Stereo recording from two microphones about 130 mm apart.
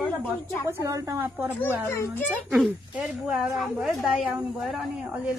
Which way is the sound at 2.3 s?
10° right (ahead or behind).